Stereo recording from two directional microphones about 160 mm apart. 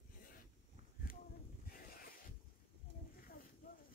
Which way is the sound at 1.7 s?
65° left (ahead or behind).